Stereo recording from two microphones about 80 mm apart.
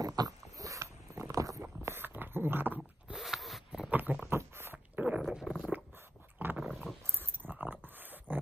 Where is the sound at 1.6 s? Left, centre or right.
Right.